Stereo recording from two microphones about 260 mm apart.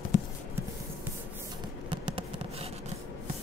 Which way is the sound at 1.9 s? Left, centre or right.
Centre.